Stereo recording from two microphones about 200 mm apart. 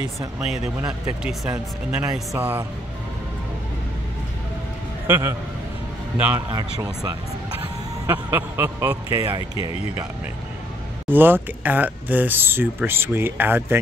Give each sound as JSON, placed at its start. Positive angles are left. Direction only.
{"t": 0.7, "sound": "speech", "side_deg": -5}
{"t": 5.0, "sound": "a man's voice", "side_deg": -10}
{"t": 6.5, "sound": "speech", "side_deg": -20}
{"t": 9.6, "sound": "speech", "side_deg": 30}
{"t": 11.1, "sound": "speech", "side_deg": -10}